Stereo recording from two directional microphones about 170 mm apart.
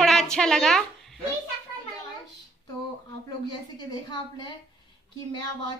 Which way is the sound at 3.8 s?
25° left (ahead or behind).